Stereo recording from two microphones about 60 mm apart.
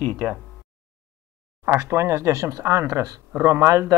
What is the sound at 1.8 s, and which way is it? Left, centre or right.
Speech, right.